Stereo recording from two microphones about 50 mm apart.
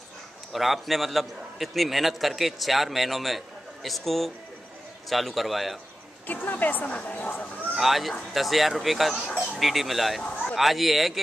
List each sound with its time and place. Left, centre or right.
0.5 s a man's voice: centre
6.2 s a woman's voice: left
7.8 s a man's voice: centre